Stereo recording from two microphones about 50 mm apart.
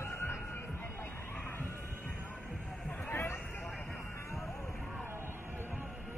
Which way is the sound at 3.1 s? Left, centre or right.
Left.